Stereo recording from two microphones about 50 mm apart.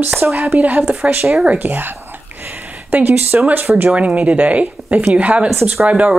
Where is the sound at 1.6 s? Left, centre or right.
Right.